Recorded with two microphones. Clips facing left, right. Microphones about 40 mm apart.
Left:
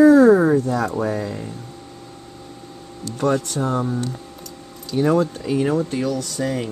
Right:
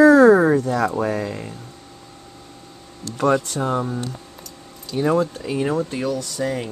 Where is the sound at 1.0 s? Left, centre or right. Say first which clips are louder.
Even; centre.